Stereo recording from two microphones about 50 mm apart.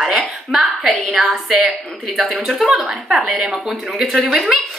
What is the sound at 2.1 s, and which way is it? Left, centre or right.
Speech, centre.